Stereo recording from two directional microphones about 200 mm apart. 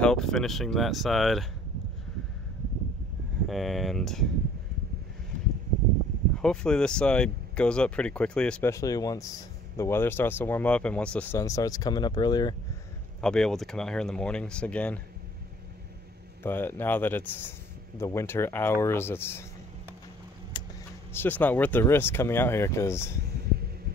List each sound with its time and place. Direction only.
0.0 s speech: 5° left (ahead or behind)
3.4 s speech: centre (ahead or behind)
6.4 s speech: 5° left (ahead or behind); by 12.5 s 20° left (ahead or behind)
13.2 s speech: 5° left (ahead or behind)
16.4 s speech: 10° left (ahead or behind)
20.5 s vehicle: 25° left (ahead or behind)
21.1 s speech: 10° left (ahead or behind)